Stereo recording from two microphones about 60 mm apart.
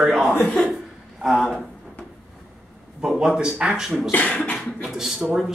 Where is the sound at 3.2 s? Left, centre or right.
Centre.